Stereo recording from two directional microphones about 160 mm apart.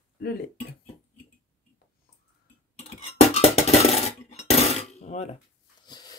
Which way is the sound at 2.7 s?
40° left (ahead or behind).